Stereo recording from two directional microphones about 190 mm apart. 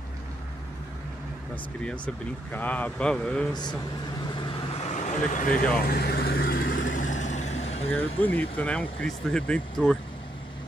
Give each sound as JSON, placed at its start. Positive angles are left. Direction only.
{"t": 2.5, "sound": "speech", "side_deg": 10}
{"t": 4.4, "sound": "vehicle", "side_deg": 25}
{"t": 4.9, "sound": "speech", "side_deg": 40}
{"t": 6.7, "sound": "vehicle", "side_deg": 90}
{"t": 7.0, "sound": "vehicle", "side_deg": 40}
{"t": 7.9, "sound": "speech", "side_deg": 10}